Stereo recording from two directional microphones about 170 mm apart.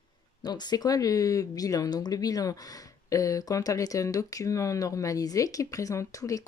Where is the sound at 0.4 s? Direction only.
25° left (ahead or behind).